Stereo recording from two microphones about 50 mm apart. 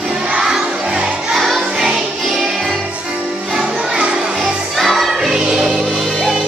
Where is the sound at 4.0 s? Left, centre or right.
Centre.